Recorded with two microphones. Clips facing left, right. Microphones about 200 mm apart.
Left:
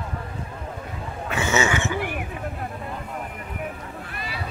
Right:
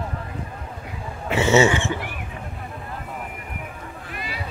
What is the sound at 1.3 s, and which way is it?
Speech, 30° right (ahead or behind).